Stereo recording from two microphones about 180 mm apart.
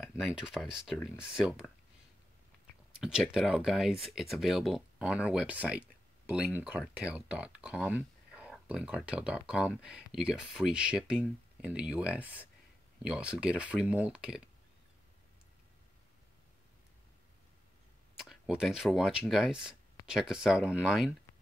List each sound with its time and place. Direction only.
0.4 s speech: 5° right (ahead or behind)
3.0 s speech: 5° right (ahead or behind)
18.2 s speech: centre (ahead or behind)